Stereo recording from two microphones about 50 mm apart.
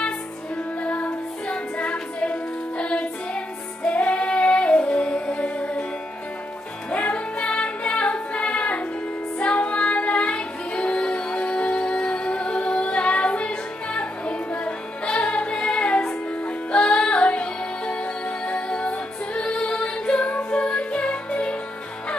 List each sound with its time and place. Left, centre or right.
0.8 s music: left
6.9 s music: left